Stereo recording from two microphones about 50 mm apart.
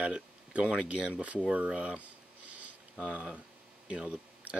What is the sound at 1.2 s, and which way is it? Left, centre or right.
Speech, right.